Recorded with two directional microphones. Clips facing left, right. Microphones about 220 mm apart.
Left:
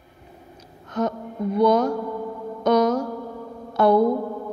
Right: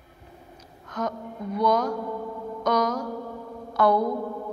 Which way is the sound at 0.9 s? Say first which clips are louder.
Left 5 dB; 25° left (ahead or behind).